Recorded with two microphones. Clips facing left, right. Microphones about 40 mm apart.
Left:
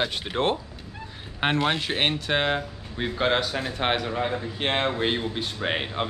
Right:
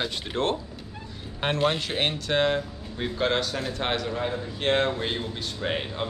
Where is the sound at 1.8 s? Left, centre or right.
Left.